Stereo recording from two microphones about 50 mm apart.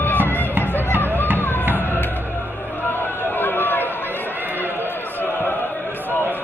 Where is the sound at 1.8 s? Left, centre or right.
Left.